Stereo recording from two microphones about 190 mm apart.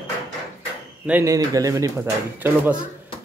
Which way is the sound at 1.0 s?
10° right (ahead or behind).